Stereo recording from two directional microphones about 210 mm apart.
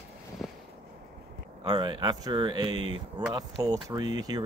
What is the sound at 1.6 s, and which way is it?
Speech, 20° right (ahead or behind).